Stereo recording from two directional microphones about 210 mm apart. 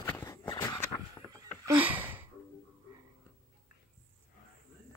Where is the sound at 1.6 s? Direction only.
10° right (ahead or behind).